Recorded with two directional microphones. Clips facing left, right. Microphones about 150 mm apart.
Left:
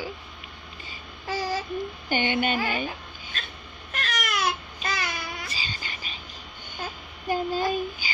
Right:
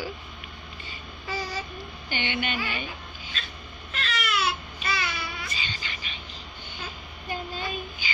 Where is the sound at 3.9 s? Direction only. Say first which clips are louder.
Even; 45° left (ahead or behind).